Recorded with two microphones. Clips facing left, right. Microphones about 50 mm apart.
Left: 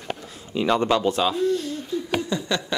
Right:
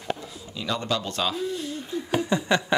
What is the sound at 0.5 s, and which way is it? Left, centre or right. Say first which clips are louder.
Speech: left 8 dB; left.